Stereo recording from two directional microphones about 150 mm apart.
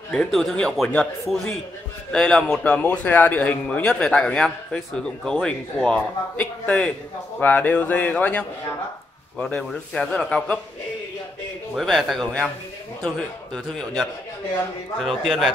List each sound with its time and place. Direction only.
0.1 s a man's voice: 5° left (ahead or behind)
11.7 s a man's voice: centre (ahead or behind)
15.0 s a man's voice: centre (ahead or behind)